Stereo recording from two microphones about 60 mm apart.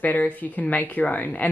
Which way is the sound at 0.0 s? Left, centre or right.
Left.